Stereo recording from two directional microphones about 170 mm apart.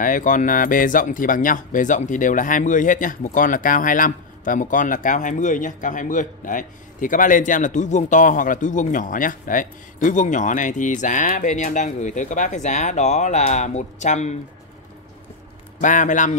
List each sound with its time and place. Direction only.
0.0 s speech: 50° left (ahead or behind)
15.8 s speech: 50° left (ahead or behind)